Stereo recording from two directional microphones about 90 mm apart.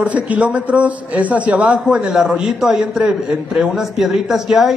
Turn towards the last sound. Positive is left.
turn(degrees=-5)  # may be behind; listen again after turning